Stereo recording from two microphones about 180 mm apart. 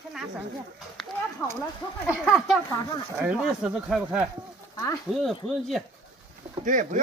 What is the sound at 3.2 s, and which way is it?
Speech, 5° right (ahead or behind).